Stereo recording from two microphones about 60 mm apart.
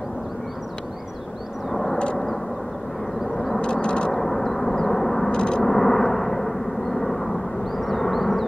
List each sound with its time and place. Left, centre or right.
1.7 s vehicle: centre
3.3 s vehicle: centre
3.6 s a sound: centre
4.1 s gong: centre
5.3 s a sound: centre
5.6 s vehicle: centre